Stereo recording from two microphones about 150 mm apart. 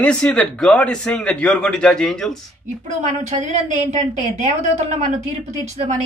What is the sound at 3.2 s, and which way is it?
A woman's voice, 50° right (ahead or behind).